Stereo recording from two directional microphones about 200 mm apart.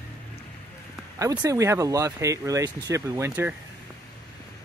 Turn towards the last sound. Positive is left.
turn(degrees=-15)  # may be behind; listen again after turning